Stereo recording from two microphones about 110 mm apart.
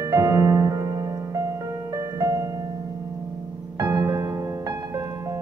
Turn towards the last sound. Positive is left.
turn(degrees=-30)  # may be behind; listen again after turning